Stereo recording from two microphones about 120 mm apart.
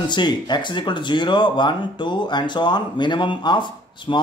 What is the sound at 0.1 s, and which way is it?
Speech, 40° left (ahead or behind).